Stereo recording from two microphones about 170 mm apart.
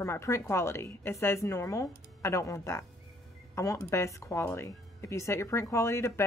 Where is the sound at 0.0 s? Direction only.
15° left (ahead or behind).